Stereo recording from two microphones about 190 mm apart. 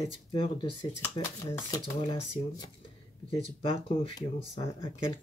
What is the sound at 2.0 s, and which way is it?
Speech, 30° left (ahead or behind).